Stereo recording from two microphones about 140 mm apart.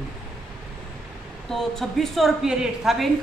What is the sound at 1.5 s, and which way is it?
A woman's voice, centre (ahead or behind).